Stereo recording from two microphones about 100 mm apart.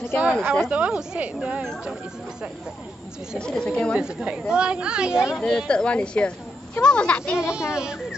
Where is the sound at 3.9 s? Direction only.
10° right (ahead or behind).